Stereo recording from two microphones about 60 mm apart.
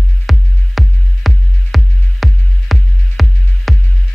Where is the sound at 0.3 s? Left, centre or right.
Centre.